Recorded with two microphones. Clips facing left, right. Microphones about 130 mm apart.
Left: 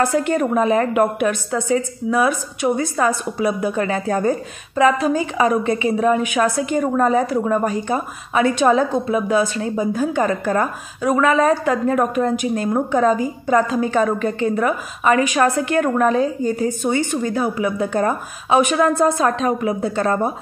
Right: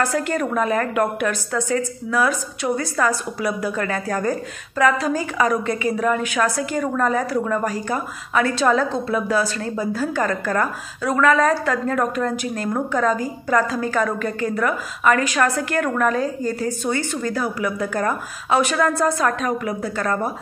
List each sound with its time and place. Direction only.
0.0 s a woman's voice: 20° left (ahead or behind)